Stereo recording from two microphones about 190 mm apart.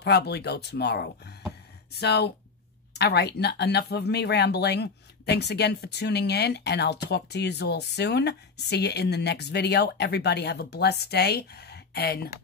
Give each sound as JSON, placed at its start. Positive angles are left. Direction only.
{"t": 0.0, "sound": "speech", "side_deg": 60}